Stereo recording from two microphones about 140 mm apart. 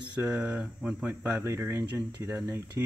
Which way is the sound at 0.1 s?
10° right (ahead or behind).